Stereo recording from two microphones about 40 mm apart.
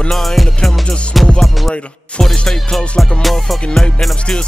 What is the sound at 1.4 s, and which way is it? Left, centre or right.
Music, centre.